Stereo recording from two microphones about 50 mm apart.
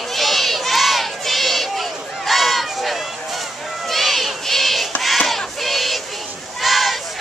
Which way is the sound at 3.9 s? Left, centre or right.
Centre.